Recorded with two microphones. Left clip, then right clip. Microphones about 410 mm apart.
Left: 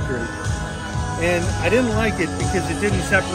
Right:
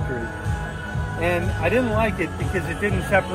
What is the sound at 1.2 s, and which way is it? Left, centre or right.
Speech, centre.